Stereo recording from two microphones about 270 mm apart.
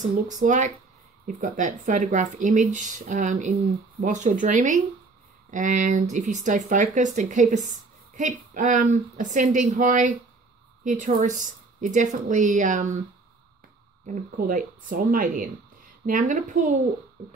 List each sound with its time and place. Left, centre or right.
0.3 s speech: right
14.0 s speech: right